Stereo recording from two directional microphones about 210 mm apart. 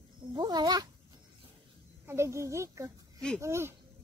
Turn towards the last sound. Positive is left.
turn(degrees=-15)  # may be behind; listen again after turning